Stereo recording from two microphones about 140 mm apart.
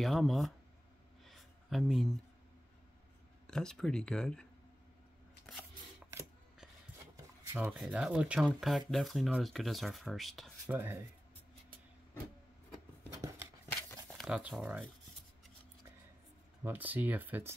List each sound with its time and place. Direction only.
0.0 s speech: centre (ahead or behind)
1.2 s a sound: centre (ahead or behind)
3.4 s speech: 5° left (ahead or behind)
7.5 s speech: 5° right (ahead or behind)
10.7 s speech: 15° right (ahead or behind)
13.1 s scissors: 25° right (ahead or behind)
14.1 s speech: centre (ahead or behind)
16.6 s speech: 15° right (ahead or behind)